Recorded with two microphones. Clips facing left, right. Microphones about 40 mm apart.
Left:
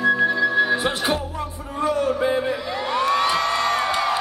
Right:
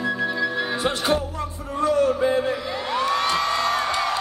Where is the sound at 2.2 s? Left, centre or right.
Centre.